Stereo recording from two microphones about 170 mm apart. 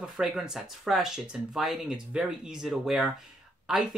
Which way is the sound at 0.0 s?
5° right (ahead or behind).